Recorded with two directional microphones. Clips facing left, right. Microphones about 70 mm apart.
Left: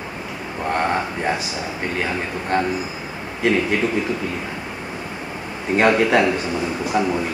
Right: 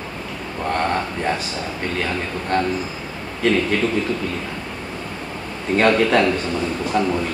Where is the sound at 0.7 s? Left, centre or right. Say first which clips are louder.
Even; centre.